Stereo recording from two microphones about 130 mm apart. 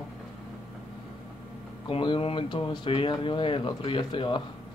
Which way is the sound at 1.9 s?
40° left (ahead or behind).